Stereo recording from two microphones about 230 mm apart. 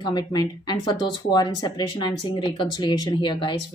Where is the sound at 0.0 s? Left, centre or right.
Centre.